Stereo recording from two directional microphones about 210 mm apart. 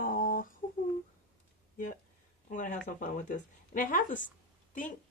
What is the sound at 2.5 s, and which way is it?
A woman's voice, 35° left (ahead or behind).